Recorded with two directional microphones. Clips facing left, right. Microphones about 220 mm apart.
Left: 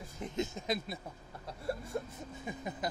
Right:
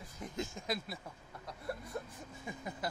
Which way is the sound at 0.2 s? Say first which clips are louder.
Left 5 dB; 20° left (ahead or behind).